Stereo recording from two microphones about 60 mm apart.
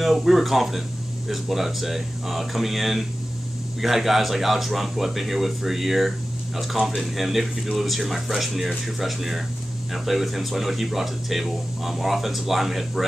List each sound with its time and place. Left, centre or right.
0.0 s speech: centre